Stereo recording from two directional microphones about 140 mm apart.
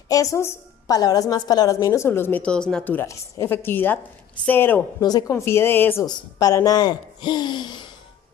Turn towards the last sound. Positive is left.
turn(degrees=30)  # may be behind; listen again after turning